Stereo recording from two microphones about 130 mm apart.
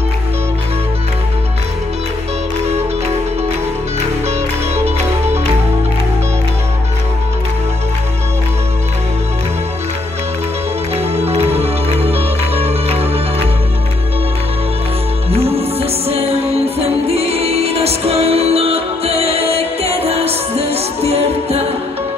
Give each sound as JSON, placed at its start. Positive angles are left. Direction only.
{"t": 11.0, "sound": "music", "side_deg": -55}
{"t": 15.3, "sound": "music", "side_deg": -50}